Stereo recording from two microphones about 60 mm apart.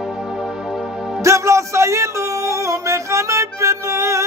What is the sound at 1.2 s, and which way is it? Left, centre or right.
Music, right.